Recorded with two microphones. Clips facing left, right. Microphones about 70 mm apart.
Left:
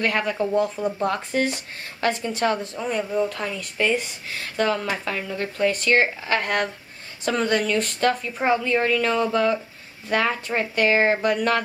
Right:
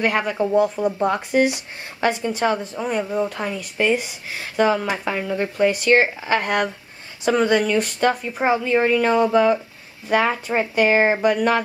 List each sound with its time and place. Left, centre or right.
0.0 s speech: centre